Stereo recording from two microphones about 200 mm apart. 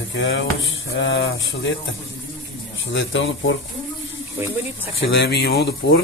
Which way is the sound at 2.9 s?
65° left (ahead or behind).